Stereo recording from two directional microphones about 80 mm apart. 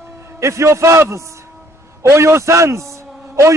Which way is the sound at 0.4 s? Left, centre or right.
Right.